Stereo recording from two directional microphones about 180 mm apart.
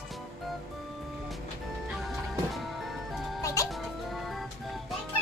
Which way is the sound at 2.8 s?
Centre (ahead or behind).